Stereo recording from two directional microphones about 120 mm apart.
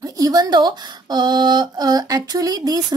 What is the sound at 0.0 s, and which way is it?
Speech, 30° right (ahead or behind).